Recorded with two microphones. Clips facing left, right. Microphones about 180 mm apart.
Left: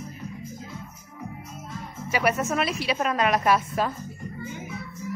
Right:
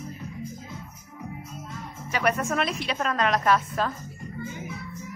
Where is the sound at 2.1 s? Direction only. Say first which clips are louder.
Left 1 dB; 5° left (ahead or behind).